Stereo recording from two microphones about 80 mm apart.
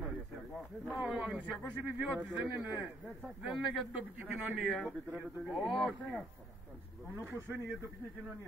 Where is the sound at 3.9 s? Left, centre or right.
Centre.